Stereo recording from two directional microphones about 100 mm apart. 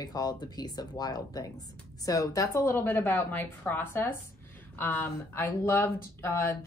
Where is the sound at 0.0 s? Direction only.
40° left (ahead or behind).